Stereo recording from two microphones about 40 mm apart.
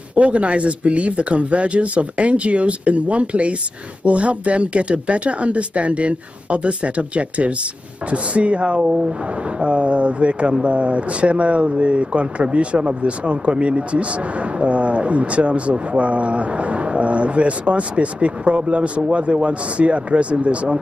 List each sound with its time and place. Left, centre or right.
0.1 s speech: right